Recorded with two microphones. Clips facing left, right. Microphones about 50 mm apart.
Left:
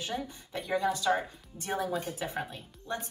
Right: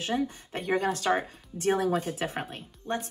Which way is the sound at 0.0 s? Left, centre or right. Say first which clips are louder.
Right 7 dB; right.